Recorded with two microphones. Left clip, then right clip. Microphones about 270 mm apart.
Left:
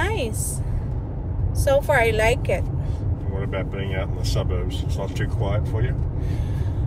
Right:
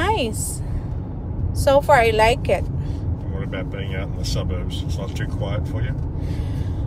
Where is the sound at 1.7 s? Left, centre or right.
Right.